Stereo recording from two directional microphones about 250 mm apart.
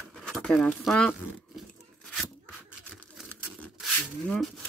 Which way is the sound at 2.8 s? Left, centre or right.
Centre.